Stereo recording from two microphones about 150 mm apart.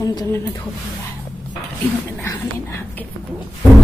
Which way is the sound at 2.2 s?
15° left (ahead or behind).